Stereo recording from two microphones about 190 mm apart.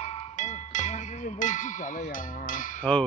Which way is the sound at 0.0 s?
30° left (ahead or behind).